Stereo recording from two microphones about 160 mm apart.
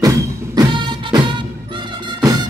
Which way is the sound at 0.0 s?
20° right (ahead or behind).